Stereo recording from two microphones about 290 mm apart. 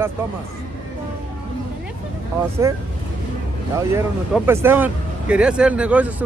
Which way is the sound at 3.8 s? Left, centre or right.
Centre.